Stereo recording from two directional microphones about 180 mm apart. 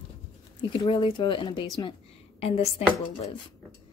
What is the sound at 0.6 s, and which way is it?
A woman's voice, 30° left (ahead or behind).